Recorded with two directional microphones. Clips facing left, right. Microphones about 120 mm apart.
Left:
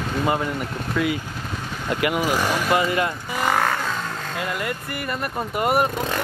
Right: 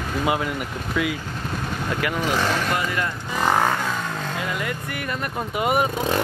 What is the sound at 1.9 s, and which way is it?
Speech, 10° left (ahead or behind).